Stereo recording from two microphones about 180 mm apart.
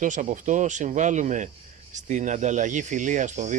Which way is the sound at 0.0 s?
45° right (ahead or behind).